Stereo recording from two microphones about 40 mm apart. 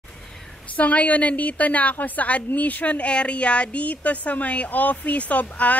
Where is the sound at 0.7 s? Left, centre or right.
Left.